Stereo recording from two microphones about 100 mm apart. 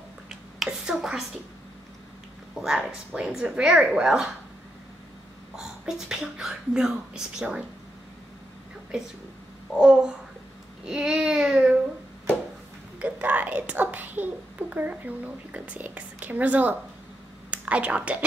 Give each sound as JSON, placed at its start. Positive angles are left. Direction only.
{"t": 0.3, "sound": "a sound", "side_deg": -5}
{"t": 2.6, "sound": "a woman's voice", "side_deg": -5}
{"t": 5.6, "sound": "a woman's voice", "side_deg": -5}
{"t": 9.8, "sound": "a woman's voice", "side_deg": -5}
{"t": 13.0, "sound": "a woman's voice", "side_deg": -15}